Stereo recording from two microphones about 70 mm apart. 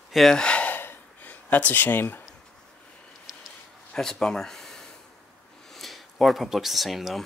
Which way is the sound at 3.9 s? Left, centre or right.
Centre.